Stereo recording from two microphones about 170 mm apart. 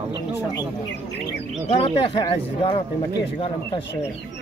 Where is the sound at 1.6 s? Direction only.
35° left (ahead or behind).